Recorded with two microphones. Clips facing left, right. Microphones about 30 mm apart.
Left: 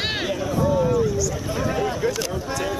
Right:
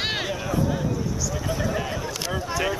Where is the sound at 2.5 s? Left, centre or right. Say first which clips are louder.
Right 3 dB; centre.